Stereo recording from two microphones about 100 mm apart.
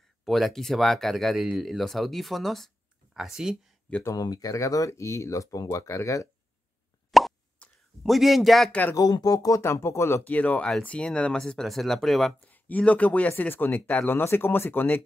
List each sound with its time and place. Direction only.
0.2 s speech: centre (ahead or behind)
4.0 s speech: 35° left (ahead or behind)
7.1 s plop: centre (ahead or behind)
8.0 s speech: centre (ahead or behind)
8.9 s speech: 35° left (ahead or behind)
9.6 s speech: 25° left (ahead or behind); by 12.4 s centre (ahead or behind)
12.4 s speech: 15° left (ahead or behind)